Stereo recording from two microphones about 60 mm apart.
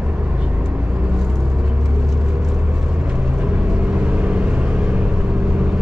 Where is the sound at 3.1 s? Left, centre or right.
Right.